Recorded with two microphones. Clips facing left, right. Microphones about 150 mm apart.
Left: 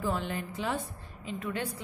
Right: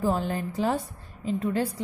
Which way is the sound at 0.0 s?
40° right (ahead or behind).